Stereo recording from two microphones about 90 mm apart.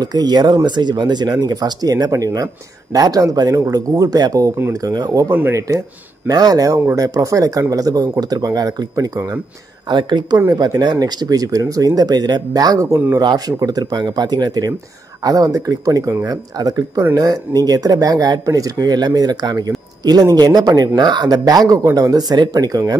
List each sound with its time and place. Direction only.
0.0 s speech: 50° right (ahead or behind)
5.3 s speech: 20° right (ahead or behind)
5.6 s speech: 35° right (ahead or behind)
9.8 s speech: 60° right (ahead or behind)
10.5 s speech: 45° right (ahead or behind)
13.2 s speech: 55° right (ahead or behind)
13.6 s speech: 45° right (ahead or behind)